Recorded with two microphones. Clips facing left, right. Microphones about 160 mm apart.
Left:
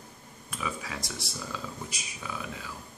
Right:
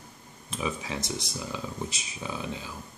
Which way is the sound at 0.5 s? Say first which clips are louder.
Right 4 dB; 25° right (ahead or behind).